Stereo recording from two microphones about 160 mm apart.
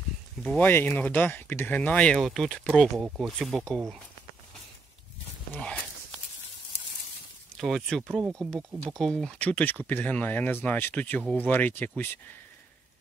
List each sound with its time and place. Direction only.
0.4 s speech: centre (ahead or behind)
5.5 s speech: 5° left (ahead or behind)
7.5 s speech: centre (ahead or behind)
8.2 s speech: 20° right (ahead or behind)
8.9 s speech: 5° left (ahead or behind)